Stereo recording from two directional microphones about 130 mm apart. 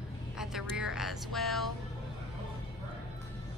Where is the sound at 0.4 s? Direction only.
5° right (ahead or behind).